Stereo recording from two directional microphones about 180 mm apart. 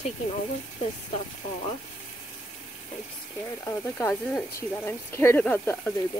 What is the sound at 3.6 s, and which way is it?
Speech, 10° left (ahead or behind).